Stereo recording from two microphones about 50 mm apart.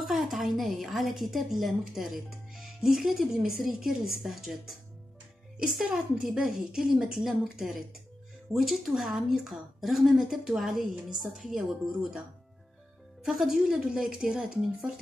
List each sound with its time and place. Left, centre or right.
0.0 s a woman's voice: centre
13.2 s speech: centre